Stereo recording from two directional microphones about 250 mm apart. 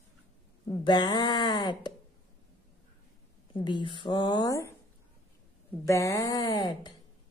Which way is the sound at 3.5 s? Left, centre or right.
Centre.